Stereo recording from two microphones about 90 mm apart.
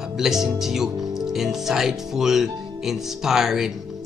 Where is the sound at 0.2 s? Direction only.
5° right (ahead or behind).